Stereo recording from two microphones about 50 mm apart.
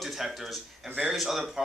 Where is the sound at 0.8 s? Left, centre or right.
Right.